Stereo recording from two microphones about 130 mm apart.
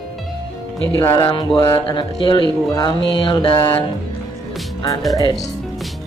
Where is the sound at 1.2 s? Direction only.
35° left (ahead or behind).